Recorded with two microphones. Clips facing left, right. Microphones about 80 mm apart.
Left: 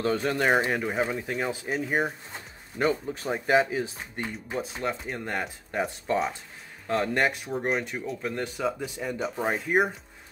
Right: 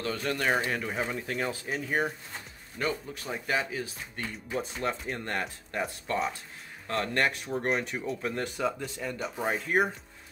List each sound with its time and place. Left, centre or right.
0.0 s speech: left
0.9 s speech: centre
3.2 s speech: left
4.6 s speech: centre
6.1 s speech: centre
7.5 s speech: centre